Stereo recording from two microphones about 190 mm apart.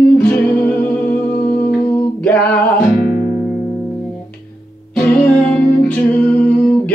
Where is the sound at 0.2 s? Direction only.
5° left (ahead or behind).